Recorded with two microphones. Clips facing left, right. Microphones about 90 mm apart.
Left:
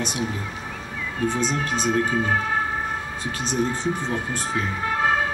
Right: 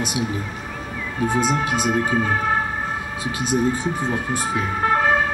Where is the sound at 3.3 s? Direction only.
10° right (ahead or behind).